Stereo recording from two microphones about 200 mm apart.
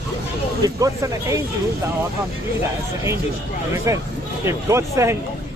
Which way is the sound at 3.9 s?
15° right (ahead or behind).